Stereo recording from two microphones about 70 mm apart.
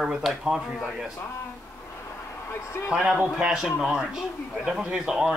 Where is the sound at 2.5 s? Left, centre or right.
Left.